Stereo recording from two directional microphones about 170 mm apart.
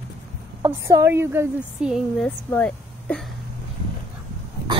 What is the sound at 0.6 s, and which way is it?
A woman's voice, 15° right (ahead or behind).